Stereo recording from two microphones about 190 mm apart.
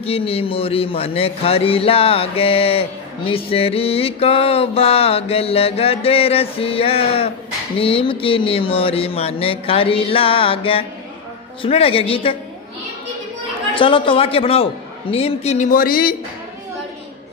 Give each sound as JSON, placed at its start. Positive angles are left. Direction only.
{"t": 0.0, "sound": "speech", "side_deg": 30}
{"t": 13.7, "sound": "speech", "side_deg": 25}